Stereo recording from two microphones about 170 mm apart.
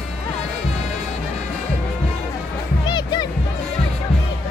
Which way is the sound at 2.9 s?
25° left (ahead or behind).